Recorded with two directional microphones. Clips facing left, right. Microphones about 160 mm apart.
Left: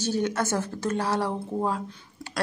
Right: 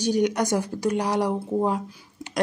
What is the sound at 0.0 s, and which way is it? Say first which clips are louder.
Speech: right 4 dB; 15° right (ahead or behind).